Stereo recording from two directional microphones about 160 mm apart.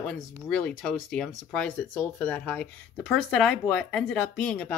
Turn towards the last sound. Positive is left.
turn(degrees=5)  # may be behind; listen again after turning